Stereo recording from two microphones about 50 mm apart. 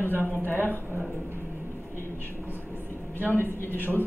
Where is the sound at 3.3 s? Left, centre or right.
Left.